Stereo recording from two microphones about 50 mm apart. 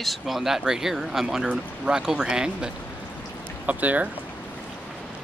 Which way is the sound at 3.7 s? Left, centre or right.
Right.